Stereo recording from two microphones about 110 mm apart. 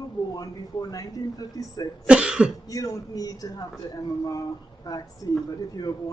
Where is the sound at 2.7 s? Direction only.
30° left (ahead or behind).